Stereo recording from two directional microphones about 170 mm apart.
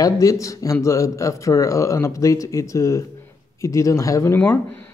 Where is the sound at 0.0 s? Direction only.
20° left (ahead or behind).